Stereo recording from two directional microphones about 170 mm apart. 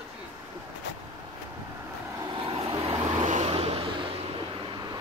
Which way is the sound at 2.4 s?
35° right (ahead or behind).